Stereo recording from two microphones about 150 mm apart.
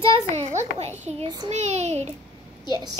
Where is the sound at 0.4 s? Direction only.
50° right (ahead or behind).